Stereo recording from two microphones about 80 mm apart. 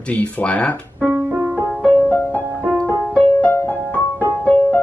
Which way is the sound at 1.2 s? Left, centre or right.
Right.